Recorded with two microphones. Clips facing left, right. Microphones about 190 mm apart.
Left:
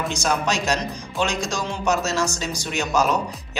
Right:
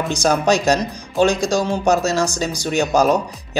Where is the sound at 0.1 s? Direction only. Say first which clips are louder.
Right 7 dB; 35° right (ahead or behind).